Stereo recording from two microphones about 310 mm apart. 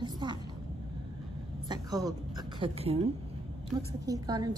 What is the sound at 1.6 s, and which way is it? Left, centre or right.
A woman's voice, centre.